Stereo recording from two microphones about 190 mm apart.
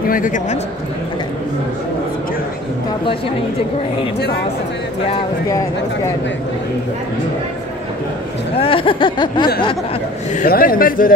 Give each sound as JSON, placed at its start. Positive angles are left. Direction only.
{"t": 0.1, "sound": "a man's voice", "side_deg": 45}
{"t": 8.5, "sound": "a sound", "side_deg": 30}
{"t": 10.3, "sound": "a man's voice", "side_deg": 50}